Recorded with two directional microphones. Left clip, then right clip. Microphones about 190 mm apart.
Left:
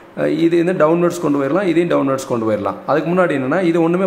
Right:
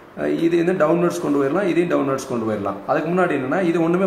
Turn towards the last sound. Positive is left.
turn(degrees=35)  # may be behind; listen again after turning